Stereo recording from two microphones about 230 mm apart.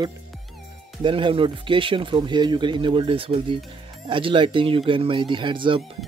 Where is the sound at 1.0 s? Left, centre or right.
Right.